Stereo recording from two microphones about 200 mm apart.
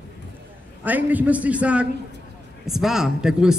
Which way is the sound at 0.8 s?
10° right (ahead or behind).